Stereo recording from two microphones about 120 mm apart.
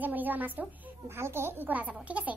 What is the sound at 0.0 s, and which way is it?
A woman's voice, 15° right (ahead or behind).